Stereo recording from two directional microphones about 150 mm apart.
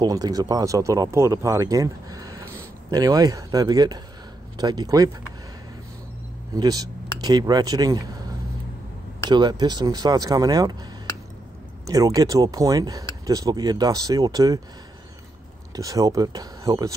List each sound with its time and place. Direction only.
0.0 s speech: 25° right (ahead or behind)
6.5 s speech: 25° right (ahead or behind)
11.8 s speech: 25° right (ahead or behind)
15.7 s speech: 25° right (ahead or behind)